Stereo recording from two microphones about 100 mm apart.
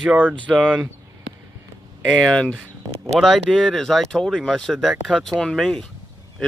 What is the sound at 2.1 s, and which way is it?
Speech, 10° left (ahead or behind).